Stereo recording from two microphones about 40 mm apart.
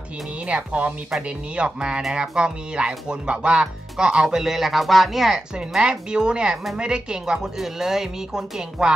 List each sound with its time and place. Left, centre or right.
0.5 s speech: right; by 5.4 s centre
5.7 s speech: centre